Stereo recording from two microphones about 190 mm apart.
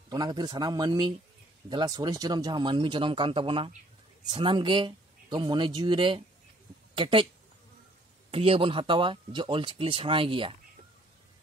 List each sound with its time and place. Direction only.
0.1 s speech: 20° right (ahead or behind)
8.3 s speech: 30° right (ahead or behind)